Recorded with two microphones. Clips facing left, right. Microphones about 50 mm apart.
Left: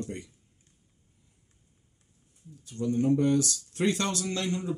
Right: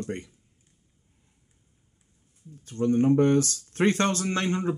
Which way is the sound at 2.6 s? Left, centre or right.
Right.